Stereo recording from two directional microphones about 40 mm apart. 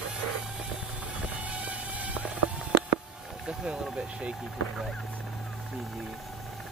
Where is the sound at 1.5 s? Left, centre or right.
Right.